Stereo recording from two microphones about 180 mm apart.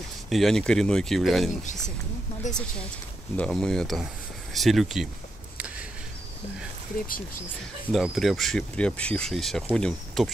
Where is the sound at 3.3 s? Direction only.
5° left (ahead or behind).